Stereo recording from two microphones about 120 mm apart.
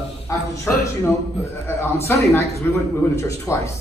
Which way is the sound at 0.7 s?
20° left (ahead or behind).